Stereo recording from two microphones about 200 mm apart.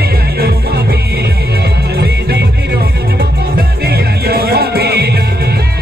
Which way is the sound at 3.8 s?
50° right (ahead or behind).